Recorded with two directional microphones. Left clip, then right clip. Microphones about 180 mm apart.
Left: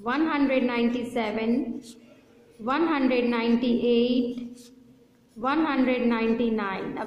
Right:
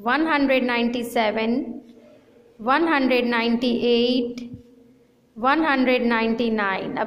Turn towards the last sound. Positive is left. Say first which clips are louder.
# right 6 dB
turn(degrees=-20)  # may be behind; listen again after turning